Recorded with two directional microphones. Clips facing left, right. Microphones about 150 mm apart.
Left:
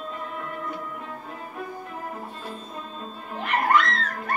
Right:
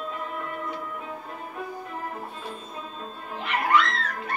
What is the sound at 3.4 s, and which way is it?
Music, 45° left (ahead or behind).